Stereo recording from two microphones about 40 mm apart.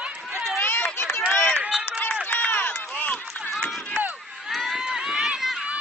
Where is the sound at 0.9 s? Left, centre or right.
Left.